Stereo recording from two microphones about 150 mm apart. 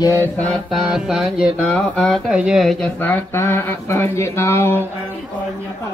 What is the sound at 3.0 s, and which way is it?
Speech, 15° left (ahead or behind).